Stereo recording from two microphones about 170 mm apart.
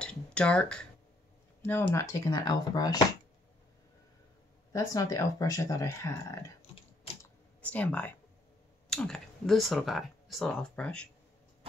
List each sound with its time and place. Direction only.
0.0 s a sound: 5° left (ahead or behind)
1.6 s speech: 10° left (ahead or behind)
4.7 s speech: 20° left (ahead or behind)
7.6 s speech: 10° left (ahead or behind)